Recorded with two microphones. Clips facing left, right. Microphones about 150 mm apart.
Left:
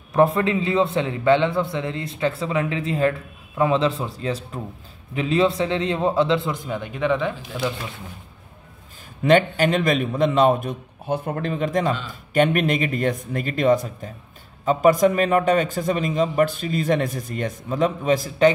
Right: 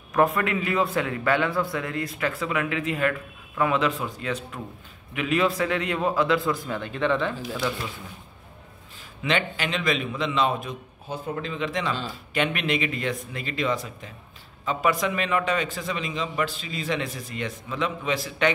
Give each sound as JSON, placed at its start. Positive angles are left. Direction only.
{"t": 0.1, "sound": "a man's voice", "side_deg": 25}
{"t": 9.2, "sound": "a man's voice", "side_deg": 50}